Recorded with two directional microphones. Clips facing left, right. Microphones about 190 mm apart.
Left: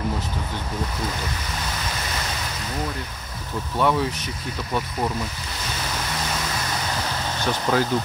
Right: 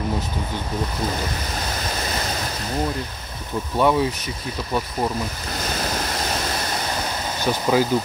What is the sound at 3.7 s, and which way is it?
Speech, 15° right (ahead or behind).